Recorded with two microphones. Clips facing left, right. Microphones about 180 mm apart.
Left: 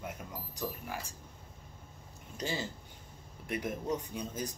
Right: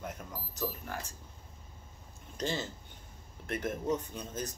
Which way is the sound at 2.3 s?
10° left (ahead or behind).